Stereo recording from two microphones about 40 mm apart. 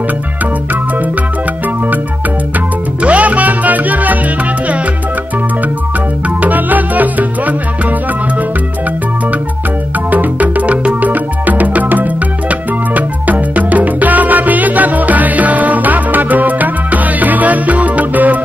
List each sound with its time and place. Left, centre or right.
3.0 s music: right
6.4 s music: right
10.1 s music: right
11.1 s music: right